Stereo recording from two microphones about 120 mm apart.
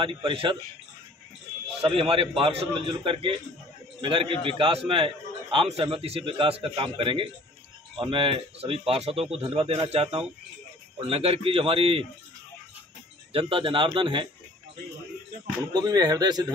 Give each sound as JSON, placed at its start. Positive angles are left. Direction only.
{"t": 0.0, "sound": "speech", "side_deg": -45}
{"t": 1.8, "sound": "speech", "side_deg": -55}
{"t": 13.3, "sound": "speech", "side_deg": -50}
{"t": 15.7, "sound": "speech", "side_deg": -35}